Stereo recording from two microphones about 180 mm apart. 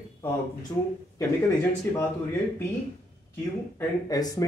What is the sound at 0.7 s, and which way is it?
Speech, 20° left (ahead or behind).